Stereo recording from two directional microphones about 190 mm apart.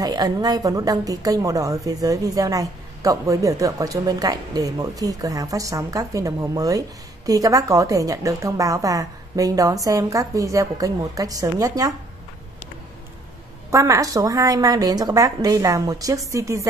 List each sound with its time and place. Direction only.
0.0 s a woman's voice: 20° right (ahead or behind)
13.7 s a woman's voice: 15° right (ahead or behind)